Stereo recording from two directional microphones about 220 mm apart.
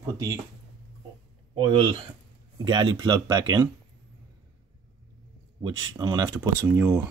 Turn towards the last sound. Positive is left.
turn(degrees=-10)  # may be behind; listen again after turning